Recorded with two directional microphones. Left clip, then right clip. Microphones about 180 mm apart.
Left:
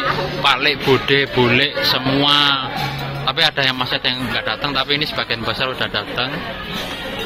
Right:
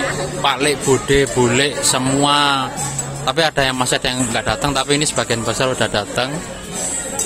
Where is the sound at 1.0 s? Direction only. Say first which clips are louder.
Even; 35° right (ahead or behind).